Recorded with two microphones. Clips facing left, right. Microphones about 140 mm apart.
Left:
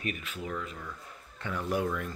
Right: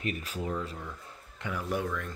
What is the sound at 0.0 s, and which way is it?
Speech, 35° right (ahead or behind).